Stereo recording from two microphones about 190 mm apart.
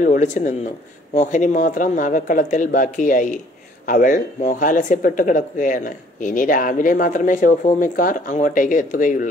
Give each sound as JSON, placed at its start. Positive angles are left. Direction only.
{"t": 0.0, "sound": "speech", "side_deg": 40}